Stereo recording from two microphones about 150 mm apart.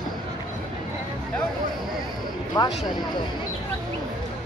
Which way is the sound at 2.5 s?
30° left (ahead or behind).